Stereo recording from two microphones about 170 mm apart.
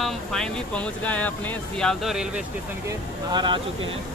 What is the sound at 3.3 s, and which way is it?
Speech, 25° right (ahead or behind).